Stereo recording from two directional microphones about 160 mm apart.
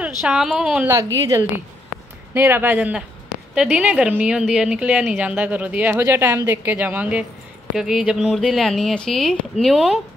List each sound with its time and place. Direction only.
0.2 s speech: centre (ahead or behind)
0.9 s a woman's voice: 20° right (ahead or behind); by 9.9 s centre (ahead or behind)